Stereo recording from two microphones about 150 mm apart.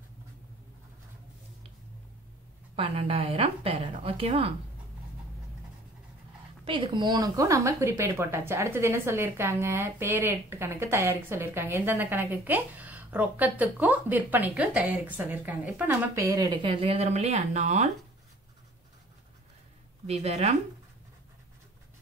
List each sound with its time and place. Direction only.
2.7 s a woman's voice: 40° right (ahead or behind)
6.6 s a woman's voice: 35° right (ahead or behind); by 16.0 s 10° right (ahead or behind)
16.2 s speech: 25° right (ahead or behind); by 17.8 s 50° right (ahead or behind)
20.1 s speech: 45° right (ahead or behind)